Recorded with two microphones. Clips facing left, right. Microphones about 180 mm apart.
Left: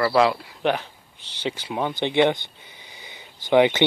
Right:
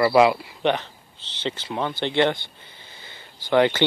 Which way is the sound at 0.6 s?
5° left (ahead or behind).